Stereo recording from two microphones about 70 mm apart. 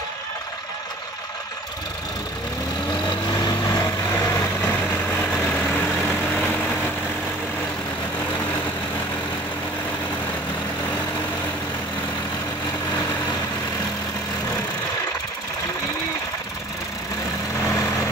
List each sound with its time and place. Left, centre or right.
2.9 s vehicle: left
3.6 s vehicle: left
4.1 s vehicle: left
4.6 s vehicle: left